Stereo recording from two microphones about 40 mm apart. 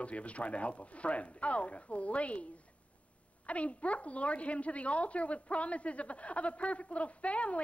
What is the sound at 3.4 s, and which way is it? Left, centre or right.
A woman's voice, left.